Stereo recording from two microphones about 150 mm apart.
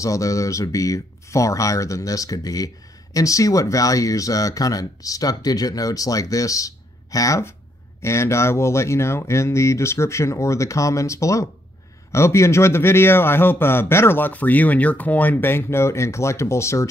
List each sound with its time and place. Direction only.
0.0 s a man's voice: 20° left (ahead or behind)